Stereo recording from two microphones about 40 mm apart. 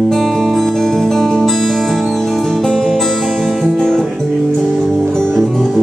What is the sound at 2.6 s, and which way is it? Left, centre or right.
Music, centre.